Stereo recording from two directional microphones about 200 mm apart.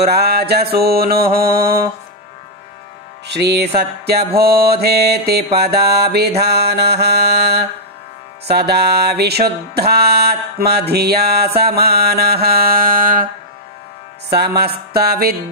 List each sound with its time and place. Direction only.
0.0 s music: 50° right (ahead or behind)
3.3 s music: 55° right (ahead or behind)
6.4 s mantra: 55° right (ahead or behind)
8.5 s music: 55° right (ahead or behind)
14.3 s music: 55° right (ahead or behind)